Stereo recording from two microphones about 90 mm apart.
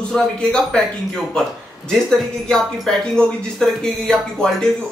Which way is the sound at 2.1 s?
5° left (ahead or behind).